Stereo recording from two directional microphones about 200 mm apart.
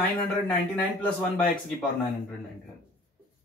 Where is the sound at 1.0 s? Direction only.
5° left (ahead or behind).